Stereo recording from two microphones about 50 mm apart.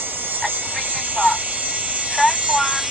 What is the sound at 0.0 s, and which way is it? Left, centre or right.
Music, right.